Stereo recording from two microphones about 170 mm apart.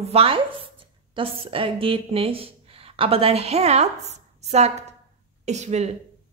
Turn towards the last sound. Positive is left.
turn(degrees=-40)  # may be behind; listen again after turning